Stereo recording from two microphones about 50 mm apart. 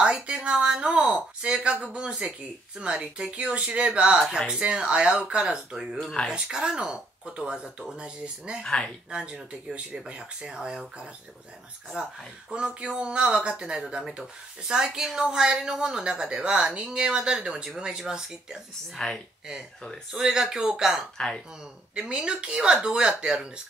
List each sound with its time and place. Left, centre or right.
0.0 s speech: right
8.6 s speech: centre
9.1 s speech: right
18.9 s speech: centre
20.1 s speech: centre